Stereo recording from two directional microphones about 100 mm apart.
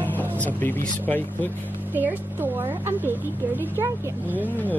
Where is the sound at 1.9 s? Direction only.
20° right (ahead or behind).